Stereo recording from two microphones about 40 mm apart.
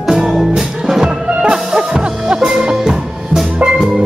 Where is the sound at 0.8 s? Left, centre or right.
Centre.